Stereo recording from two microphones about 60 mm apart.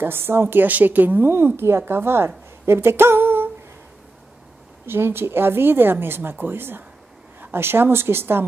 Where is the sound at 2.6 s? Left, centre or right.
Right.